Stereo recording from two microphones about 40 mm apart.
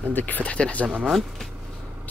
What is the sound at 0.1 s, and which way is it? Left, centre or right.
Speech, left.